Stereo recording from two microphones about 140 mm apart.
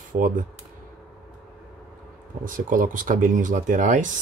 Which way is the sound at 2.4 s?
75° right (ahead or behind).